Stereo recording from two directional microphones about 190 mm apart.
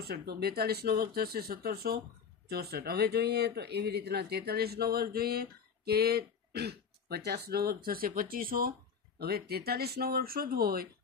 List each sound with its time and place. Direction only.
0.1 s speech: 60° right (ahead or behind)